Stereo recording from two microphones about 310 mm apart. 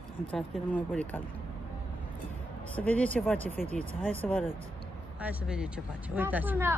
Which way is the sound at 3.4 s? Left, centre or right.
Right.